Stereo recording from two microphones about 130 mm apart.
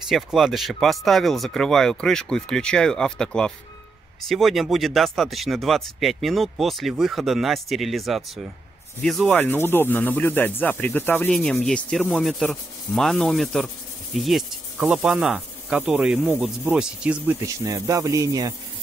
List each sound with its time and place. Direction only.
0.1 s speech: centre (ahead or behind)
9.3 s speech: 15° left (ahead or behind)
11.2 s speech: 5° left (ahead or behind)
17.6 s speech: 25° right (ahead or behind)